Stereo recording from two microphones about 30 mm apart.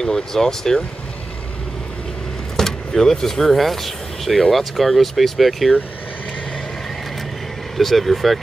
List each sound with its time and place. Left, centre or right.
0.0 s speech: centre
2.5 s speech: centre
7.7 s speech: centre